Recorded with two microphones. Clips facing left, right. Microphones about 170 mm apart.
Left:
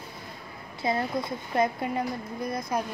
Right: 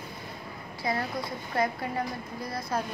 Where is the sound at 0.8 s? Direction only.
20° left (ahead or behind).